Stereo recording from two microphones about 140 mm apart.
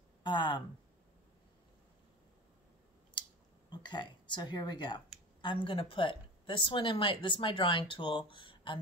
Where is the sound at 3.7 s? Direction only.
35° left (ahead or behind).